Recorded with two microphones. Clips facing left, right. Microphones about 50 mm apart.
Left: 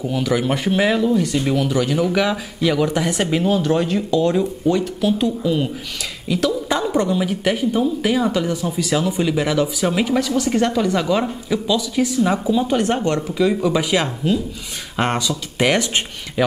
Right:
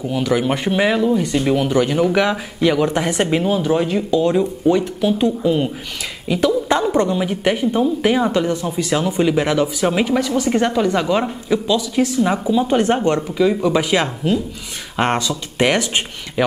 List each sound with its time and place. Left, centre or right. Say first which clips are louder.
0.1 s speech: right 2 dB; centre
8.3 s speech: right 2 dB; centre
12.7 s speech: right 3 dB; right
13.3 s speech: even; centre
15.1 s speech: right 1 dB; right
16.4 s speech: right 1 dB; centre